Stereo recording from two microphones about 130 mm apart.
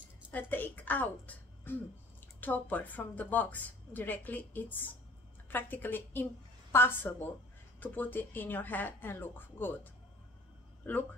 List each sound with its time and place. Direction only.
0.3 s a woman's voice: 15° left (ahead or behind)